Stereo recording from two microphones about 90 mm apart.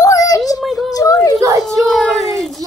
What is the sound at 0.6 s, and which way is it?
Speech, centre (ahead or behind).